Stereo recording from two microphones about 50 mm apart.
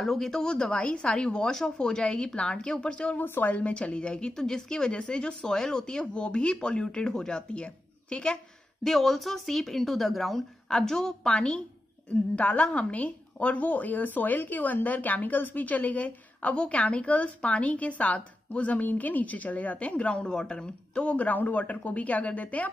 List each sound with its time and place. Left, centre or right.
0.0 s speech: centre
3.2 s a woman's voice: left
3.7 s speech: left
4.3 s speech: centre
8.8 s a woman's voice: centre; by 22.7 s left